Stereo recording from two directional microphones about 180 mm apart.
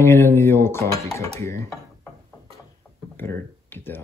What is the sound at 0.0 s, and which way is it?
Speech, 15° left (ahead or behind).